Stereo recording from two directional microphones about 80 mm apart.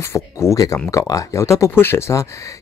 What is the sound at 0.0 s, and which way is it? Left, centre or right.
Speech, left.